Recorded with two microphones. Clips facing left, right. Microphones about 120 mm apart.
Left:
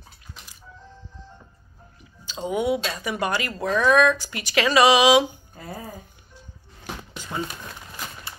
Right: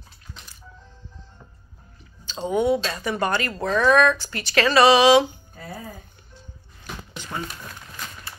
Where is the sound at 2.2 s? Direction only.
10° left (ahead or behind).